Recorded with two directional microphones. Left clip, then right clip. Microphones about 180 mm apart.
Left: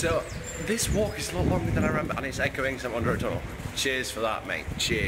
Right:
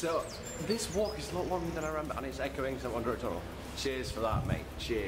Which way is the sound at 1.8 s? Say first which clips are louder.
Left 7 dB; 10° left (ahead or behind).